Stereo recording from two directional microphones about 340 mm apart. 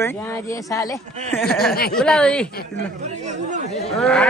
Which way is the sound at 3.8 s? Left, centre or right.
Centre.